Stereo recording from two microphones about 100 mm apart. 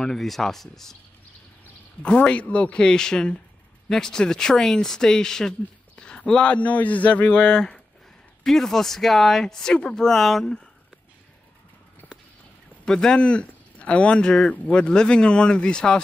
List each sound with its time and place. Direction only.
0.0 s speech: 5° left (ahead or behind)
2.0 s speech: 10° left (ahead or behind)
12.8 s speech: 5° left (ahead or behind)